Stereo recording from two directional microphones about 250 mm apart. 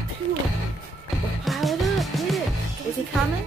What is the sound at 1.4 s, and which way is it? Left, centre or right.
Music, centre.